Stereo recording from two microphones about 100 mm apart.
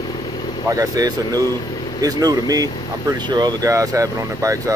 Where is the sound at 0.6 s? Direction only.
35° right (ahead or behind).